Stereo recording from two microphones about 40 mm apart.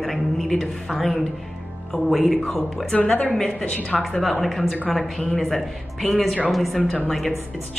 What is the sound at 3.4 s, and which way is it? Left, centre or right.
Speech, left.